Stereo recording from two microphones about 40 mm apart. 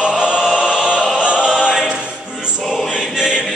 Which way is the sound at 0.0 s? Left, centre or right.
Right.